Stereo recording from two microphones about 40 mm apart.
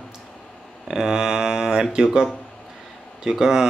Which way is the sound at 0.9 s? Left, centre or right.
Centre.